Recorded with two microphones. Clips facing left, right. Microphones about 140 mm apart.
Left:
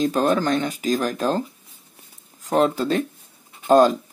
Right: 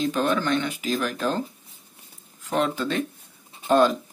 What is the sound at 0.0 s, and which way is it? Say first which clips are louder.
Speech: left 4 dB; 40° left (ahead or behind).